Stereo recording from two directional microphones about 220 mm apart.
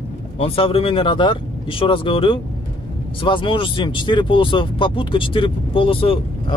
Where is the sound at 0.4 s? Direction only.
25° left (ahead or behind).